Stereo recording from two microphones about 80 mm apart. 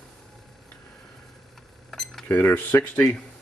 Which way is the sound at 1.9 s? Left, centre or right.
Centre.